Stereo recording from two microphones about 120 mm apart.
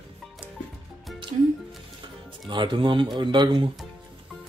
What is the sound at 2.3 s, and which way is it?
Speech, 40° right (ahead or behind).